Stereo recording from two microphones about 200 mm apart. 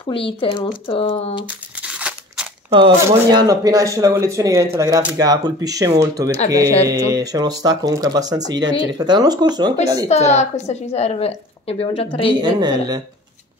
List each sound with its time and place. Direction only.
0.0 s speech: 25° left (ahead or behind)
1.8 s scissors: 5° right (ahead or behind)
3.1 s speech: 20° right (ahead or behind)
10.0 s a woman's voice: 35° left (ahead or behind)
12.4 s speech: 20° right (ahead or behind)